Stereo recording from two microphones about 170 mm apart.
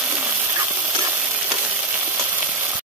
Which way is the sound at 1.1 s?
5° right (ahead or behind).